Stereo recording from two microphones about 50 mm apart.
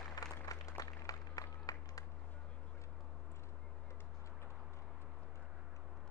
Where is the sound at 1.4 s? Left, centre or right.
Left.